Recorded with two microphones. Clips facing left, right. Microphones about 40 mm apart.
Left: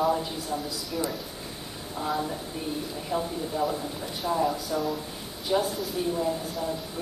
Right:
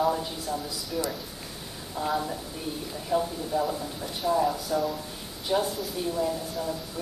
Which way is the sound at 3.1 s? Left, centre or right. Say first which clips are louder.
Right 3 dB; centre.